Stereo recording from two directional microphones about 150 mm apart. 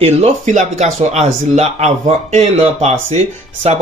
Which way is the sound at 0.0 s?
50° right (ahead or behind).